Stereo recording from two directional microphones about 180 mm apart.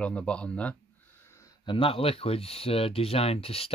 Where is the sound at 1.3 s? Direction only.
15° left (ahead or behind).